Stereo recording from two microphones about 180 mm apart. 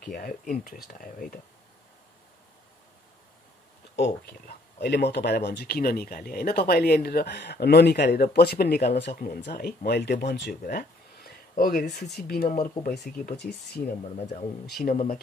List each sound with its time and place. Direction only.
0.1 s speech: 50° left (ahead or behind)
4.0 s speech: 65° left (ahead or behind)
10.6 s a sound: 55° left (ahead or behind)
12.3 s speech: 55° left (ahead or behind)